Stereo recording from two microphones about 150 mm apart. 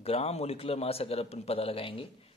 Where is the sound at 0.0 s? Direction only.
40° left (ahead or behind).